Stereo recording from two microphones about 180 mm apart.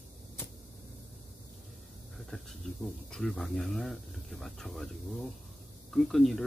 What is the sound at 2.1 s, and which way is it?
Speech, centre (ahead or behind).